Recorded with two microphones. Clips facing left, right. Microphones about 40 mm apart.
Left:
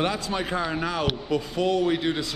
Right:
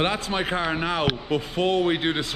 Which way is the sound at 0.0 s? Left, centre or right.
Right.